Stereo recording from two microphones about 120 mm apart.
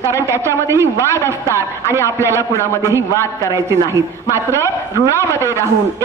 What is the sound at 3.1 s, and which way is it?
Speech, 25° left (ahead or behind).